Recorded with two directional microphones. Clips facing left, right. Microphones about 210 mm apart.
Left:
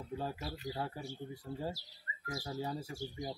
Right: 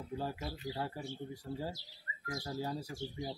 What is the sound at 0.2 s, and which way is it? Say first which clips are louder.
Speech: right 1 dB; centre (ahead or behind).